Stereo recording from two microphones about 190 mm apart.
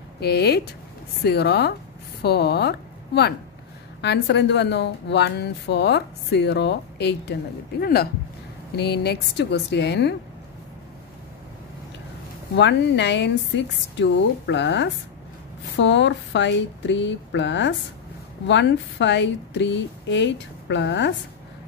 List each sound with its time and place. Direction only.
0.2 s speech: 55° left (ahead or behind)
12.5 s a woman's voice: 65° left (ahead or behind)